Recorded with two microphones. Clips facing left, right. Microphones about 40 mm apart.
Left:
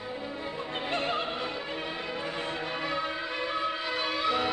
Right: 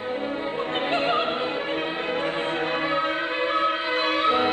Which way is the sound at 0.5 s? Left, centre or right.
Right.